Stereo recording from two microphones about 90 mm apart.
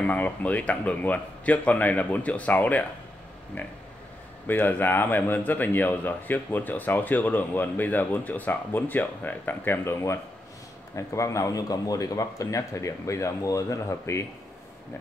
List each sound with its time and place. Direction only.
0.0 s a man's voice: 15° left (ahead or behind); by 14.2 s 30° left (ahead or behind)